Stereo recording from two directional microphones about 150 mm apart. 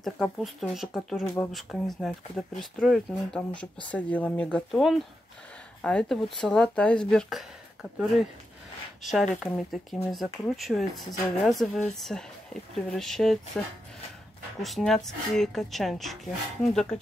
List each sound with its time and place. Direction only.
0.0 s speech: centre (ahead or behind)
1.2 s speech: 15° left (ahead or behind)
1.5 s speech: centre (ahead or behind)
9.0 s speech: centre (ahead or behind)
14.6 s speech: centre (ahead or behind)